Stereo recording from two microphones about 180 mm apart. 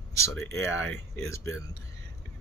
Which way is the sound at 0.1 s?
15° left (ahead or behind).